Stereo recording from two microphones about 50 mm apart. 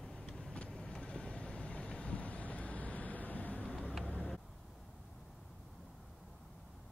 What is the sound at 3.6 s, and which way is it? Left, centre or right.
Vehicle, left.